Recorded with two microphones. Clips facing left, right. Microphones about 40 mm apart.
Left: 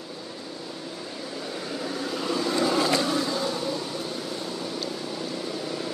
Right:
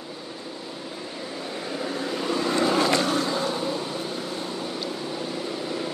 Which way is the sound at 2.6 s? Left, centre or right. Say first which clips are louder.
Right 2 dB; right.